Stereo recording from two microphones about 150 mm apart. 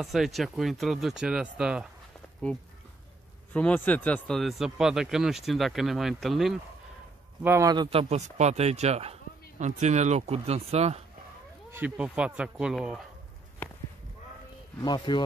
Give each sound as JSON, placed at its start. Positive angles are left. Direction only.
{"t": 0.0, "sound": "speech", "side_deg": 0}
{"t": 3.5, "sound": "speech", "side_deg": 10}
{"t": 7.4, "sound": "speech", "side_deg": -20}
{"t": 7.7, "sound": "speech", "side_deg": -35}
{"t": 11.7, "sound": "speech", "side_deg": -10}
{"t": 14.8, "sound": "speech", "side_deg": 30}